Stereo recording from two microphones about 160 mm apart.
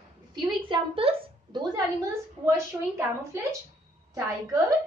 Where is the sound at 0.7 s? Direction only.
35° right (ahead or behind).